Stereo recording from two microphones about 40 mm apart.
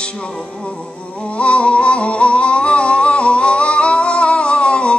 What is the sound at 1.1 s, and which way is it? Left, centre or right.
Music, left.